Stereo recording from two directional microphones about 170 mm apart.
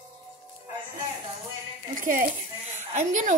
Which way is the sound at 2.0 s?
55° right (ahead or behind).